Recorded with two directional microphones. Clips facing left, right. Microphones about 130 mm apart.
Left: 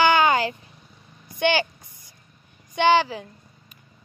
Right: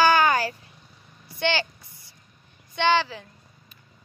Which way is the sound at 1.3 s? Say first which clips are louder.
Left 4 dB; 15° left (ahead or behind).